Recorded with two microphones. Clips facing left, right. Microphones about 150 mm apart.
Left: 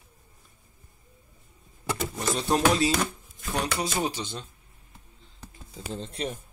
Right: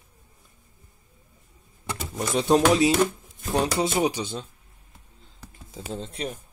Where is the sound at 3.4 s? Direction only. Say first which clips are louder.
Right 5 dB; 35° right (ahead or behind).